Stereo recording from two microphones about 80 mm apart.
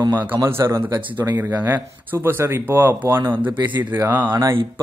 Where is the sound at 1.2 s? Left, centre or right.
Right.